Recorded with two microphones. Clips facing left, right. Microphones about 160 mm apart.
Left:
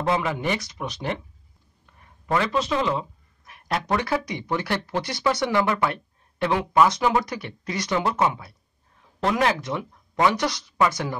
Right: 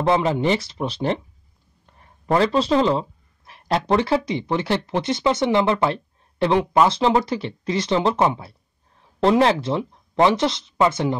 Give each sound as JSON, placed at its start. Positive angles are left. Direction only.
{"t": 0.0, "sound": "speech", "side_deg": -25}